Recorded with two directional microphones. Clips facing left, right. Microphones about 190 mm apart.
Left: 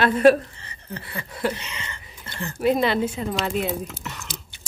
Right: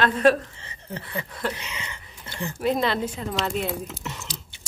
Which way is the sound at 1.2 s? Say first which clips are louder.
Left 6 dB; 10° left (ahead or behind).